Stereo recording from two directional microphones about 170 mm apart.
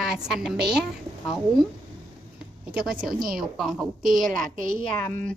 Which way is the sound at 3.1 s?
60° right (ahead or behind).